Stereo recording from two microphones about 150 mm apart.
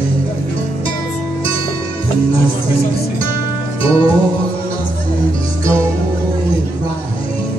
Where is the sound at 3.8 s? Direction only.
40° left (ahead or behind).